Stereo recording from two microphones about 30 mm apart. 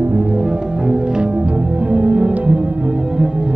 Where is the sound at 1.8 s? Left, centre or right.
Right.